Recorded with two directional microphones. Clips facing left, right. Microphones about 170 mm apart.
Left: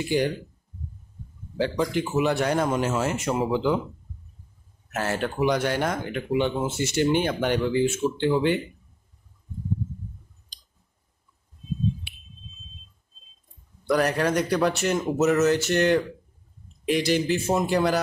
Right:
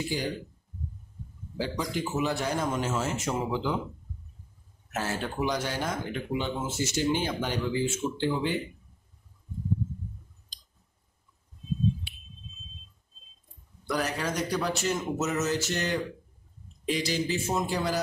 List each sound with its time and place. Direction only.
1.6 s speech: 65° left (ahead or behind)
4.9 s speech: 65° left (ahead or behind)
13.9 s speech: 60° left (ahead or behind)